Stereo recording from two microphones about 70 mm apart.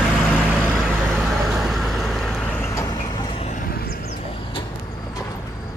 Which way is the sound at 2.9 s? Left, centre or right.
Left.